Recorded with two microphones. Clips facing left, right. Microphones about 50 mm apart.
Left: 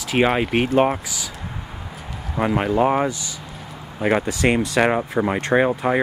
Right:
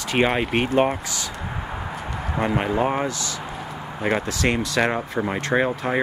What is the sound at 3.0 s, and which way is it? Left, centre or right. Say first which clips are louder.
Speech: left 1 dB; centre.